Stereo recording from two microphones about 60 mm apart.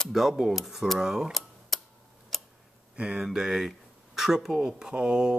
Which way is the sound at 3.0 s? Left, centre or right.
Centre.